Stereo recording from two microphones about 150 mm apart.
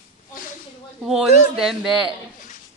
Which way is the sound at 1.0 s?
5° right (ahead or behind).